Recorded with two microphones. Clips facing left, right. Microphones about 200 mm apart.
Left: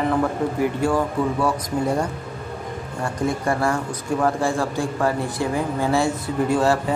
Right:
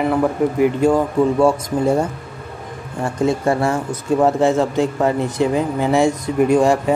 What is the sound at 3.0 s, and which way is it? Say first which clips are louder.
A man's voice: right 6 dB; 25° right (ahead or behind).